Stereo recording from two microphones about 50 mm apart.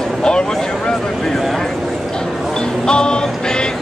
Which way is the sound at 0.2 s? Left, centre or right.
Centre.